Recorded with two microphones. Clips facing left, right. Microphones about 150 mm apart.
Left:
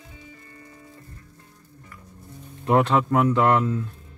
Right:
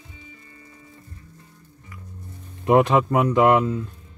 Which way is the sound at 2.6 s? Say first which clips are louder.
Right 3 dB; 15° right (ahead or behind).